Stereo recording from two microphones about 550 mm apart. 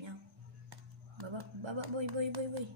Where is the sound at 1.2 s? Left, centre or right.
Right.